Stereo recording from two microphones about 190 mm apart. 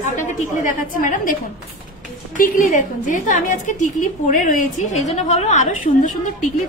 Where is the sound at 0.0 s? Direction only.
45° left (ahead or behind).